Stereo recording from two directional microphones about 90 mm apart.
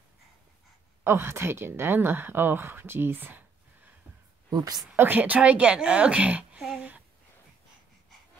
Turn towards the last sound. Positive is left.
turn(degrees=-10)  # may be behind; listen again after turning